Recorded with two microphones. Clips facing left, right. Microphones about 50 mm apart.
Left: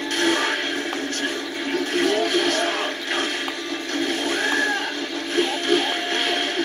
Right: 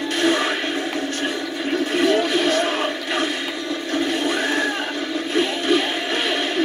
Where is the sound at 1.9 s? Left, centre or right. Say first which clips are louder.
Right 2 dB; right.